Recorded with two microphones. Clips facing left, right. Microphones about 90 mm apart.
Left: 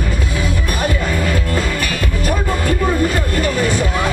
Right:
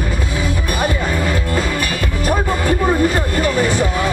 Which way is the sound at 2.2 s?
40° right (ahead or behind).